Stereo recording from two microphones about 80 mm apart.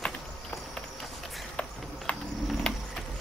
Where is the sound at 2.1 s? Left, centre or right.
Centre.